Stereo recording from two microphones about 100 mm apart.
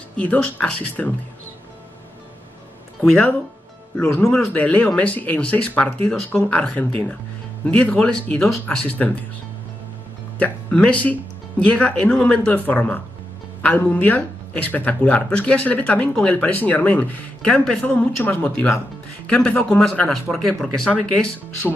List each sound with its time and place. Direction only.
0.2 s speech: 15° left (ahead or behind)
3.9 s speech: 5° left (ahead or behind)
10.4 s speech: 10° left (ahead or behind)
19.9 s speech: 5° left (ahead or behind)